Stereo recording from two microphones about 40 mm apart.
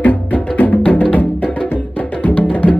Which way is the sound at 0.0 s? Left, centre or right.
Left.